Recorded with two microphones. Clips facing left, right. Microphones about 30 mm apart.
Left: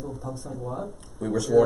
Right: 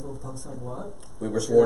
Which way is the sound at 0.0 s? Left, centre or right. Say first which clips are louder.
Left 3 dB; centre.